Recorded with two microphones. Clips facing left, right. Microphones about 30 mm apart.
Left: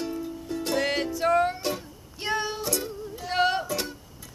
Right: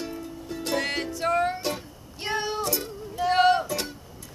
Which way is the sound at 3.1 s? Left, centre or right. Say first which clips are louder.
Right 5 dB; centre.